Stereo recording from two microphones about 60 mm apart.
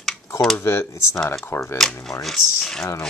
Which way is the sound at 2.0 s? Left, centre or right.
Centre.